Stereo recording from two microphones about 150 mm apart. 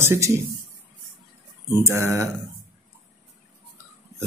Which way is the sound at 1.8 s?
20° right (ahead or behind).